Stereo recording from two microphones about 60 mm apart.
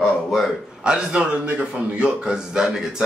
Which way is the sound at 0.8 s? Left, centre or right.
Centre.